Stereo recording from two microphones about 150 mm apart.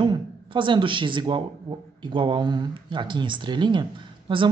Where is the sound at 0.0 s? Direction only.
35° right (ahead or behind).